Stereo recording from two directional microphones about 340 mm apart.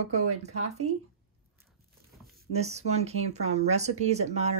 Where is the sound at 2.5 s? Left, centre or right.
Centre.